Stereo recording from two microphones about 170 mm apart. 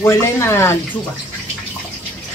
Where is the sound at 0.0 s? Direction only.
15° left (ahead or behind).